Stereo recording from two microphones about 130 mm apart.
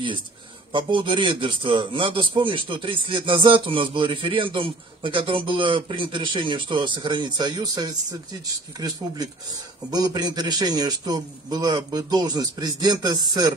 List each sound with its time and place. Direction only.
0.7 s a man's voice: 40° right (ahead or behind)